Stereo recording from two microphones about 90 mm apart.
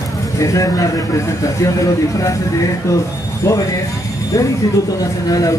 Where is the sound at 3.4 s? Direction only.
35° left (ahead or behind).